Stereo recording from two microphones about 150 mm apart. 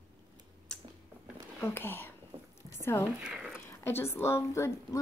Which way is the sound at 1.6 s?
15° left (ahead or behind).